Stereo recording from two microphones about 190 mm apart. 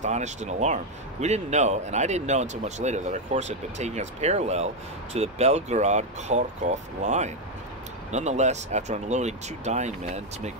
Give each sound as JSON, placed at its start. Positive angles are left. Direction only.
{"t": 0.0, "sound": "speech", "side_deg": -40}